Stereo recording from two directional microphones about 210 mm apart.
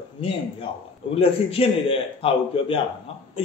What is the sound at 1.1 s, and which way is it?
A man's voice, 25° left (ahead or behind).